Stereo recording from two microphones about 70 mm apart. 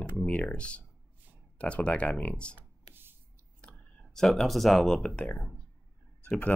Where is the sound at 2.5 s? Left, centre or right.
Right.